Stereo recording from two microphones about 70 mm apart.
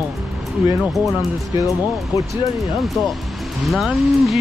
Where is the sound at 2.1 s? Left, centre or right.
Left.